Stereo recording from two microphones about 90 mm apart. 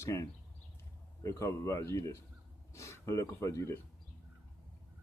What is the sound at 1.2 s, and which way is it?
A man's voice, 35° left (ahead or behind).